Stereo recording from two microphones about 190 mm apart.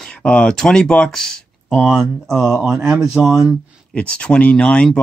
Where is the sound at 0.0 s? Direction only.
5° left (ahead or behind).